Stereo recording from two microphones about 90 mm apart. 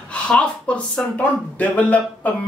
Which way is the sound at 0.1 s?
15° left (ahead or behind).